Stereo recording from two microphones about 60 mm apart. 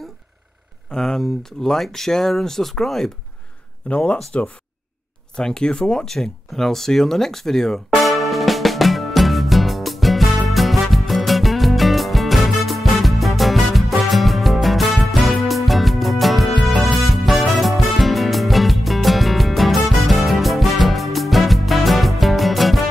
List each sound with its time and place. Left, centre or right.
0.9 s speech: centre
3.9 s speech: left
5.3 s speech: centre
6.1 s music: centre